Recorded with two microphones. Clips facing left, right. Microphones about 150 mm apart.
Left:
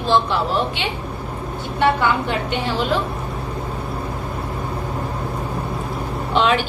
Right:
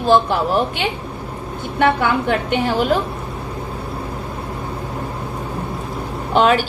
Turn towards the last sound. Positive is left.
turn(degrees=-45)  # may be behind; listen again after turning